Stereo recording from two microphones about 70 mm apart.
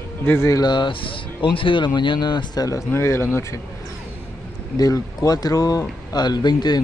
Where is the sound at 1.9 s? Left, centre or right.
Left.